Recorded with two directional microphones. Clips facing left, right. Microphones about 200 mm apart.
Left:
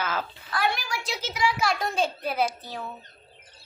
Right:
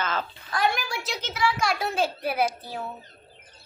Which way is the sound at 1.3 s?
15° left (ahead or behind).